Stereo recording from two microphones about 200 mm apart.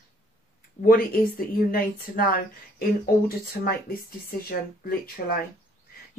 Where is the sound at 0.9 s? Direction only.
45° left (ahead or behind).